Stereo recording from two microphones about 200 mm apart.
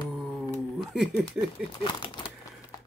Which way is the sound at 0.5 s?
Centre (ahead or behind).